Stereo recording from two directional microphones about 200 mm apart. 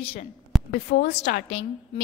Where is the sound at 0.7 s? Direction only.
55° left (ahead or behind).